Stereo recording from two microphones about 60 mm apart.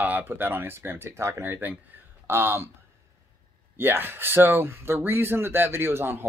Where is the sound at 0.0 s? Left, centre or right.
Right.